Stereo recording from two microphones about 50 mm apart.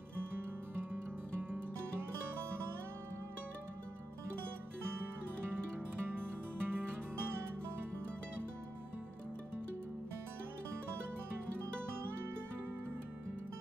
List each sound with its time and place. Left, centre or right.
6.0 s music: right